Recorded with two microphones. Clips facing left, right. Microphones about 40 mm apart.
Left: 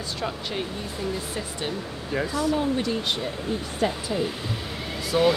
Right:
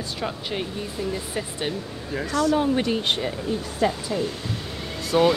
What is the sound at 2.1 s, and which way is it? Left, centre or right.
Speech, centre.